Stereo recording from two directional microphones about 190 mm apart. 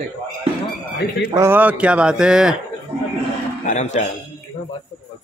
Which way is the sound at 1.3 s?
10° right (ahead or behind).